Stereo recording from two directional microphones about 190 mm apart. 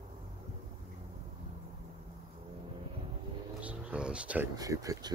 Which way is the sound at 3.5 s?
5° right (ahead or behind).